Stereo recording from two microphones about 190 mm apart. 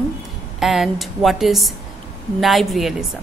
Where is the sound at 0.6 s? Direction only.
Centre (ahead or behind).